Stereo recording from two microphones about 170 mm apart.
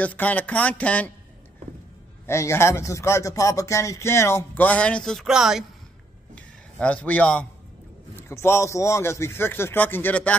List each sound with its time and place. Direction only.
0.0 s speech: 10° left (ahead or behind)
2.2 s speech: 15° left (ahead or behind); by 5.7 s 5° right (ahead or behind)
6.3 s a sound: 5° left (ahead or behind)
8.2 s speech: 15° left (ahead or behind)